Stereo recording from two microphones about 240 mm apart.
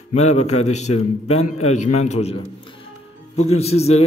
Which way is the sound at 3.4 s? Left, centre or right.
Left.